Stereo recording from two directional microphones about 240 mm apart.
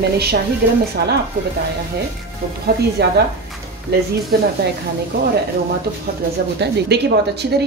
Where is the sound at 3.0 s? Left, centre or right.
Right.